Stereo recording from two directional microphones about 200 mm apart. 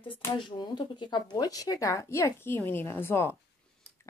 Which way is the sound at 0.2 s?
20° left (ahead or behind).